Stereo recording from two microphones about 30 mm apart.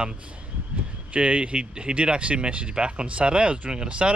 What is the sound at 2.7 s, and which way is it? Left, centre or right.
Speech, right.